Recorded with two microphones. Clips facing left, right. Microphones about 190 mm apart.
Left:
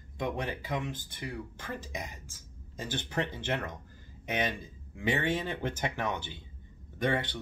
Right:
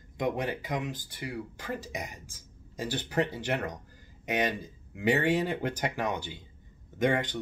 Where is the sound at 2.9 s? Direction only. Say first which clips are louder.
Right 4 dB; 10° right (ahead or behind).